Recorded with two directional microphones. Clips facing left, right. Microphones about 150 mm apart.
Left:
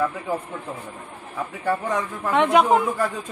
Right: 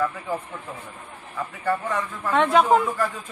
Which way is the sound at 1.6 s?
15° left (ahead or behind).